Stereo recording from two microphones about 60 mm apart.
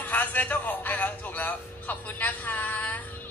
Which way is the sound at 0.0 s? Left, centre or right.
Left.